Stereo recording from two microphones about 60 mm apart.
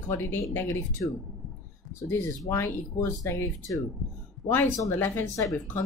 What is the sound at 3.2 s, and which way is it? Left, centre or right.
Speech, left.